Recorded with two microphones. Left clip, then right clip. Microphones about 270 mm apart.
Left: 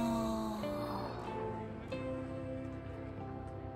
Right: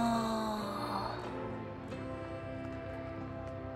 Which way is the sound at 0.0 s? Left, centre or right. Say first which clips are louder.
Right 4 dB; centre.